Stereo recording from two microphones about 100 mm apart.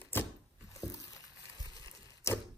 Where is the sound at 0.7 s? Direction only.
35° left (ahead or behind).